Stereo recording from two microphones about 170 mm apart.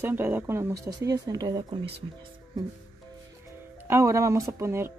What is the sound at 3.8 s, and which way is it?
Speech, 15° right (ahead or behind).